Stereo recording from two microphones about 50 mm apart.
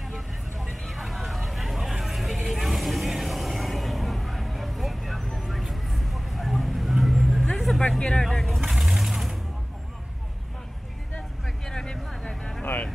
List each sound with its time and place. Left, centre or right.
0.1 s vehicle: centre
8.0 s vehicle: centre
8.3 s vehicle: centre
11.4 s a sound: centre